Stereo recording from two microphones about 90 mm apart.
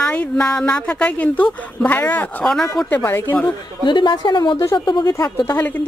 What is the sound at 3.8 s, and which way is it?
A man's voice, 60° left (ahead or behind).